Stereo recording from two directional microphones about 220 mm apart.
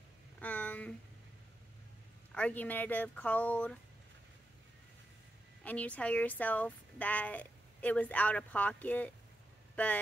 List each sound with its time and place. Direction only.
0.4 s a sound: 5° left (ahead or behind)
2.3 s a woman's voice: 5° left (ahead or behind)
5.6 s a woman's voice: 5° left (ahead or behind)